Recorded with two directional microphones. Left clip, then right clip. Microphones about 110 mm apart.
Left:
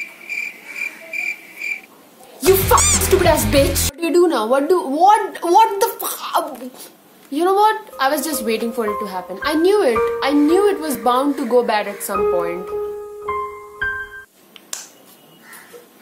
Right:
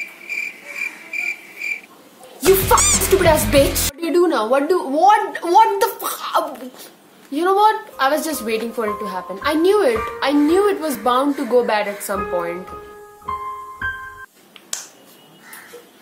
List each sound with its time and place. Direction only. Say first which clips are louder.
0.0 s cricket: even; centre (ahead or behind)
2.4 s music: even; centre (ahead or behind)
4.0 s a woman's voice: left 1 dB; 20° left (ahead or behind)